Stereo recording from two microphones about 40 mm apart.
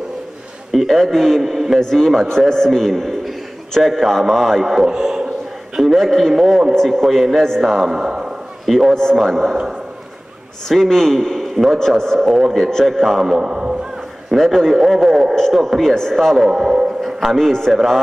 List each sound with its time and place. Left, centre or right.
0.7 s a man's voice: centre
4.8 s a sound: centre
5.8 s a man's voice: centre
8.0 s a sound: centre
8.6 s speech: centre
9.1 s a man's voice: centre
10.7 s a man's voice: centre
13.4 s a sound: right
14.3 s a man's voice: centre
15.3 s a man's voice: centre
16.4 s speech: centre